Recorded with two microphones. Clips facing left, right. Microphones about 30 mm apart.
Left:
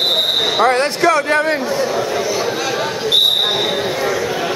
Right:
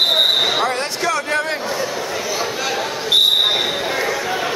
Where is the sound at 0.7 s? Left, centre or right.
Left.